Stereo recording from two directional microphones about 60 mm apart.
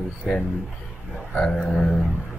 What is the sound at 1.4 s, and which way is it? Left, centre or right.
Speech, centre.